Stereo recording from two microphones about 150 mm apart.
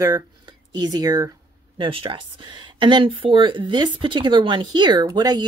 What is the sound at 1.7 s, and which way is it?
Speech, 35° right (ahead or behind).